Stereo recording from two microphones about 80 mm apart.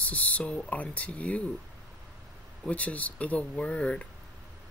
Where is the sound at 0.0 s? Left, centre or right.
Centre.